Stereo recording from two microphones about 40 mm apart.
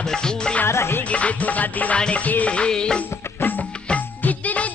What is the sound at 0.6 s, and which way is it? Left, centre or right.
Music, left.